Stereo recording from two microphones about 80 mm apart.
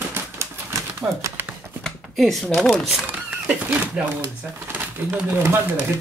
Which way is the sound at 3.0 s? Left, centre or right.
Right.